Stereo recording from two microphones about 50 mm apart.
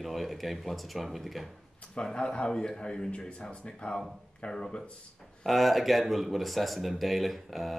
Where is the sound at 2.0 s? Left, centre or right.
Centre.